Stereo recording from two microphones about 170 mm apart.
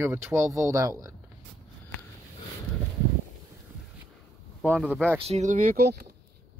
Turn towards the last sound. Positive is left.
turn(degrees=-65)  # may be behind; listen again after turning